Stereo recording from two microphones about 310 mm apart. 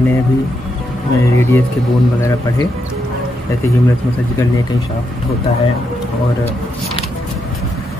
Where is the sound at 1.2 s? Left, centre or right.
Centre.